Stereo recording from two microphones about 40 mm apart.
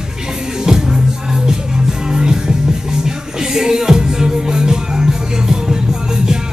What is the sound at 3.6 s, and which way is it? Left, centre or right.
Music, centre.